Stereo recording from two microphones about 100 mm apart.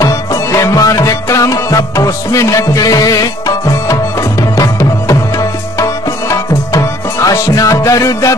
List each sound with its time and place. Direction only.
0.0 s music: 35° left (ahead or behind)